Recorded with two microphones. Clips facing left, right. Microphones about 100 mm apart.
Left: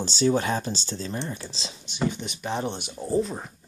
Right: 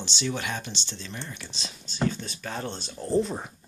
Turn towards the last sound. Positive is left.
turn(degrees=0)  # may be behind; listen again after turning